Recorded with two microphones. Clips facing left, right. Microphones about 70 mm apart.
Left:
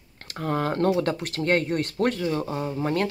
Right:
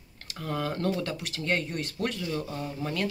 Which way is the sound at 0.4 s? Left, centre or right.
Left.